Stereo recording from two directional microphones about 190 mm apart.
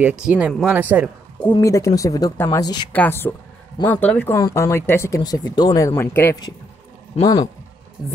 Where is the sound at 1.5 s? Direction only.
15° left (ahead or behind).